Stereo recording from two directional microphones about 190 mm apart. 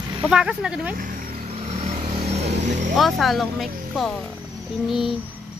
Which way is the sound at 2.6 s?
40° right (ahead or behind).